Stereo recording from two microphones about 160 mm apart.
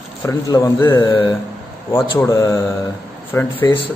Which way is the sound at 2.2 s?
15° left (ahead or behind).